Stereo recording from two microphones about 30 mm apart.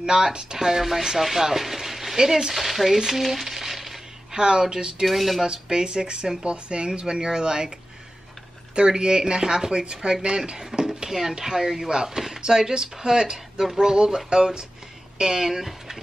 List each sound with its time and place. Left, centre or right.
0.0 s speech: right
0.7 s speech: centre
2.5 s stir: centre
3.1 s a sound: centre
4.4 s speech: right
5.0 s stir: centre
5.4 s speech: right
8.7 s speech: right; by 16.0 s centre